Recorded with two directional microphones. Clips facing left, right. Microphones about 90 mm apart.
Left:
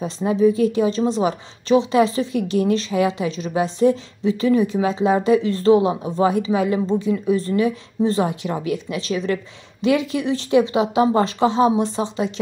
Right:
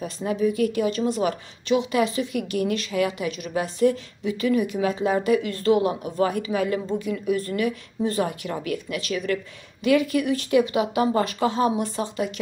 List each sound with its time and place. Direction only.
0.0 s speech: 25° left (ahead or behind)